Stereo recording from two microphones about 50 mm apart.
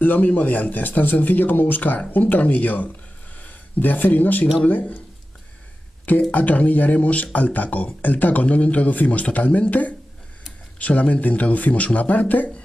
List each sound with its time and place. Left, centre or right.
0.0 s a man's voice: left
6.3 s a man's voice: left